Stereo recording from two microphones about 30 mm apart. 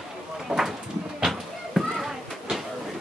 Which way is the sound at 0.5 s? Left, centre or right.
Right.